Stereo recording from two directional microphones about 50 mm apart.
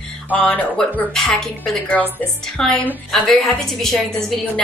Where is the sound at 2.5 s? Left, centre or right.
Centre.